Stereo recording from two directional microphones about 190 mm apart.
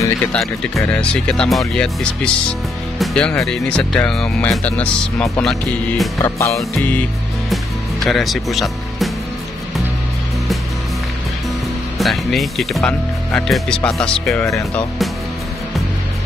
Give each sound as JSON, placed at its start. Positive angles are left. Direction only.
{"t": 0.3, "sound": "speech", "side_deg": 5}
{"t": 6.2, "sound": "music", "side_deg": 15}
{"t": 6.5, "sound": "speech", "side_deg": 5}
{"t": 7.4, "sound": "music", "side_deg": 0}
{"t": 12.0, "sound": "speech", "side_deg": 0}